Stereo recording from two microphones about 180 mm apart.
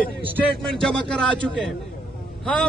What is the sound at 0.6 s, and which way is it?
A man's voice, 5° left (ahead or behind).